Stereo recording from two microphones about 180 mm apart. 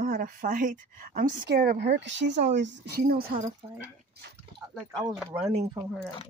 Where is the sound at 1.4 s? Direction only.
55° right (ahead or behind); by 2.4 s 85° right.